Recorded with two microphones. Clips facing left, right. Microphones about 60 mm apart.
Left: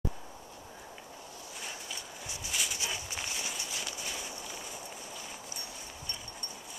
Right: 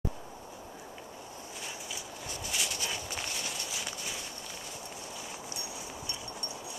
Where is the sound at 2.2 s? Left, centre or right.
Centre.